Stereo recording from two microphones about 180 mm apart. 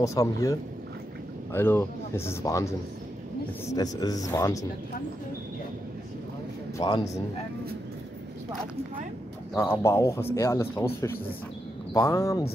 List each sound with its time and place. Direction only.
0.0 s speech: 20° left (ahead or behind)
6.8 s speech: 25° left (ahead or behind)
9.6 s speech: 15° left (ahead or behind)
11.9 s speech: 15° left (ahead or behind)